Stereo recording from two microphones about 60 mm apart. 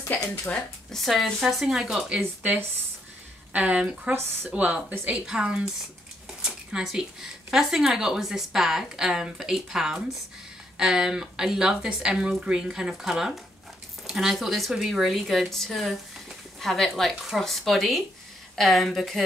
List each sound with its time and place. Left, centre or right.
0.9 s speech: centre
3.5 s a woman's voice: right
4.1 s speech: right
4.5 s a woman's voice: centre
5.1 s speech: centre